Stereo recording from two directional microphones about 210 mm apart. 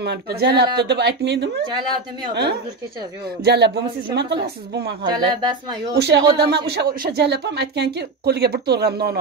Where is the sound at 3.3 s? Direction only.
50° right (ahead or behind).